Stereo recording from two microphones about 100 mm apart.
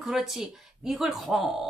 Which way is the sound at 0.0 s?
5° right (ahead or behind).